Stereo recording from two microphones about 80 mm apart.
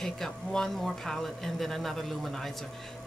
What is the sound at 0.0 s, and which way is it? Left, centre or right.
A man's voice, centre.